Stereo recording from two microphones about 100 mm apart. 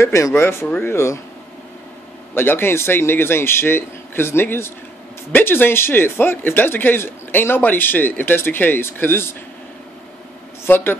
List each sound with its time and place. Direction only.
0.0 s speech: 30° left (ahead or behind)
2.3 s speech: 20° left (ahead or behind)
10.6 s speech: 20° left (ahead or behind)